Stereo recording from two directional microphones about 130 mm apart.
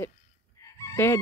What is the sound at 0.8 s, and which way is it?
Fowl, 20° left (ahead or behind).